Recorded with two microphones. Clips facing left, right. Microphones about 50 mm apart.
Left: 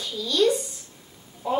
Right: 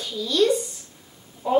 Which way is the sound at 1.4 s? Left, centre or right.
Centre.